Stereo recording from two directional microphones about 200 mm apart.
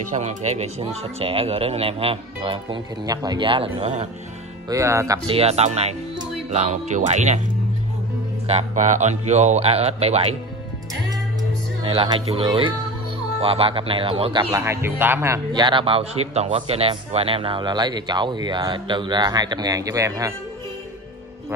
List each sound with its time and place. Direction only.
0.1 s a man's voice: 35° right (ahead or behind)
4.6 s a man's voice: 15° right (ahead or behind); by 7.3 s 35° right (ahead or behind)
8.5 s speech: 35° right (ahead or behind)
11.8 s a man's voice: 25° right (ahead or behind)